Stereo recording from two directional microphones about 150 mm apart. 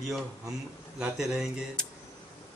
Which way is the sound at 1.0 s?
5° right (ahead or behind).